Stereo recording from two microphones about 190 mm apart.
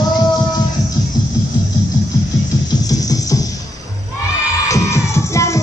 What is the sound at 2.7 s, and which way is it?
Music, 20° left (ahead or behind).